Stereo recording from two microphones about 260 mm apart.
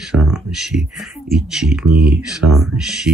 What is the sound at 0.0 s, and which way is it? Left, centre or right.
Speech, centre.